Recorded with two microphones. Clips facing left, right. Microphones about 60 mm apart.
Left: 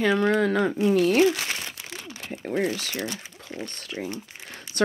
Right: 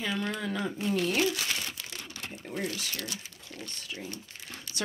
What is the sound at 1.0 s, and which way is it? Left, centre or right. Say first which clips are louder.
Crumpling: left 8 dB; left.